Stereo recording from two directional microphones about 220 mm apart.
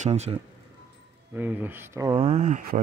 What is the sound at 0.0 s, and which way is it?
Speech, 30° right (ahead or behind).